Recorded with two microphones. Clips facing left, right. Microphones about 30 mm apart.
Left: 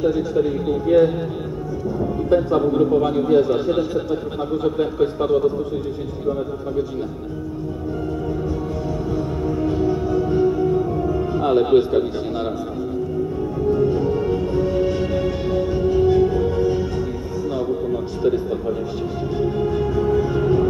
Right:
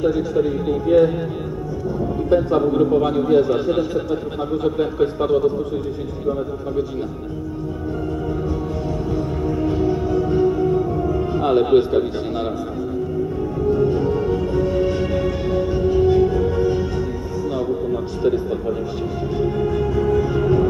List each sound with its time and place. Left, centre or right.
0.0 s a man's voice: centre
2.2 s a man's voice: centre
9.1 s music: centre
13.6 s music: centre
18.2 s a man's voice: centre
19.3 s music: centre